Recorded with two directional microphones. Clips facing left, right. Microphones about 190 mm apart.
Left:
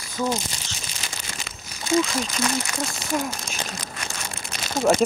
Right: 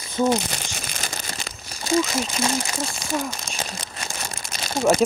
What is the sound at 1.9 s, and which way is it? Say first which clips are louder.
Speech: even; 25° right (ahead or behind).